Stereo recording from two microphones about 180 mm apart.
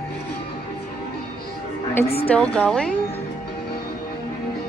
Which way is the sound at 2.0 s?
35° left (ahead or behind).